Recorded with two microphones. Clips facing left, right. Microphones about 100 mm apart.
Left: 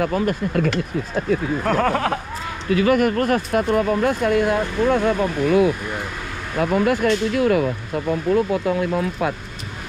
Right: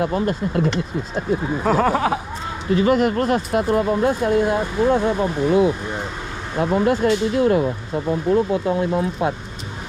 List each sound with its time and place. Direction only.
0.0 s speech: 20° right (ahead or behind)
1.6 s speech: 5° right (ahead or behind)
2.8 s speech: 25° right (ahead or behind)